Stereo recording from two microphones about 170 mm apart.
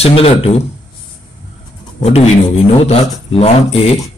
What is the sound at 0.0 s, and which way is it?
Speech, 35° left (ahead or behind).